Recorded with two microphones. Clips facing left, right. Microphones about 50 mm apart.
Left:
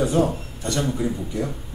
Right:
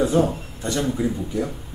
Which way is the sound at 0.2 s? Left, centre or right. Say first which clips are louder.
Even; right.